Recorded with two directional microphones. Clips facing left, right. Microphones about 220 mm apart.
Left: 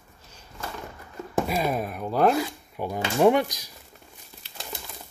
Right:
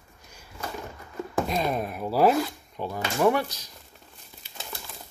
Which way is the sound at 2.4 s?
15° left (ahead or behind).